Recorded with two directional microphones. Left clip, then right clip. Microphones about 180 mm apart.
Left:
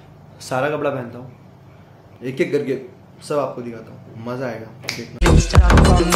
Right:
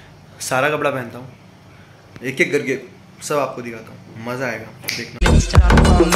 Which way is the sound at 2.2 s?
Centre (ahead or behind).